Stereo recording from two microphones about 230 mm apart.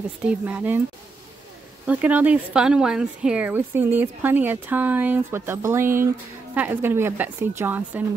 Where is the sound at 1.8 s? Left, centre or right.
Centre.